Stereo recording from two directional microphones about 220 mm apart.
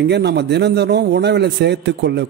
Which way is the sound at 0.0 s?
50° right (ahead or behind).